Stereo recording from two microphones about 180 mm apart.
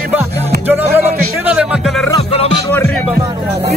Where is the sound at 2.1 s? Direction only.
30° left (ahead or behind).